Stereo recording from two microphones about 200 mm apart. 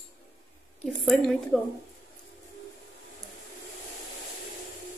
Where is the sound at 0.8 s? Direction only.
Centre (ahead or behind).